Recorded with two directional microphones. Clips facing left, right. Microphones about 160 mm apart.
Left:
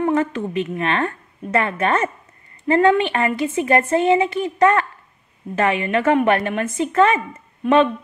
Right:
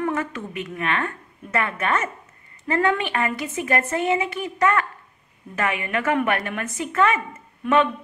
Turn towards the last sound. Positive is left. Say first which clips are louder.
# left 4 dB
turn(degrees=30)  # may be behind; listen again after turning